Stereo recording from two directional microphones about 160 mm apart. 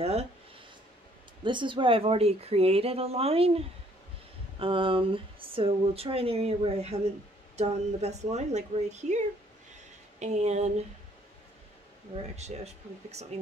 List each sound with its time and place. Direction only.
0.0 s speech: 40° right (ahead or behind)
1.4 s speech: 30° right (ahead or behind)
12.4 s speech: 45° right (ahead or behind)